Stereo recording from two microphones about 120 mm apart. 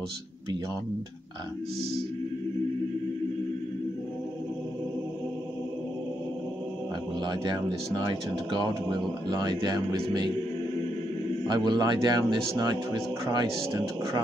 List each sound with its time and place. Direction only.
7.2 s speech: 35° right (ahead or behind)
11.4 s speech: 40° right (ahead or behind)